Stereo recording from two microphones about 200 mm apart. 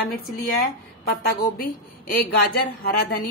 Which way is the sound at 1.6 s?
45° left (ahead or behind).